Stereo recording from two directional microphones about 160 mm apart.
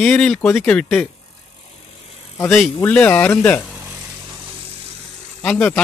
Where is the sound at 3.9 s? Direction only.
20° right (ahead or behind); by 5.3 s 40° right (ahead or behind).